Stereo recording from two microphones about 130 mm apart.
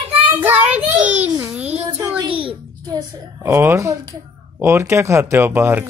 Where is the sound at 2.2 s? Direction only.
45° right (ahead or behind).